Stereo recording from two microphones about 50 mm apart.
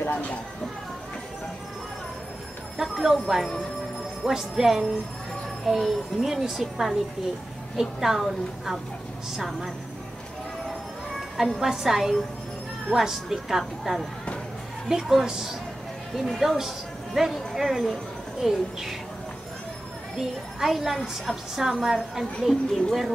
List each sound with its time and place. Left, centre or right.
0.0 s a sound: left
2.8 s a woman's voice: centre
4.2 s music: centre
5.7 s a woman's voice: centre
11.6 s music: centre
12.9 s a woman's voice: centre
14.9 s music: centre
16.2 s a woman's voice: centre
20.2 s a woman's voice: centre